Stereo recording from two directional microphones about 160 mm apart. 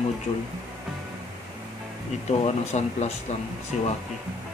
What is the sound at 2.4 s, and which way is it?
Speech, 45° left (ahead or behind).